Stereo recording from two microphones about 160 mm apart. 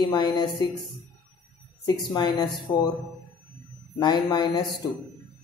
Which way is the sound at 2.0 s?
25° left (ahead or behind).